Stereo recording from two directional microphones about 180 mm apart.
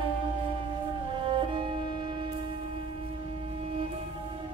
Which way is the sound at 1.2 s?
30° right (ahead or behind).